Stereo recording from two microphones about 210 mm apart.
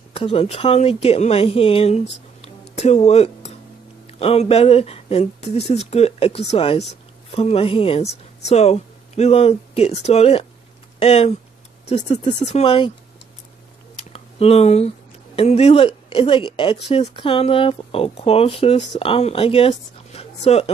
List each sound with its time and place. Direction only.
0.1 s speech: 25° left (ahead or behind)
13.9 s a sound: 30° left (ahead or behind)
15.3 s speech: 30° left (ahead or behind)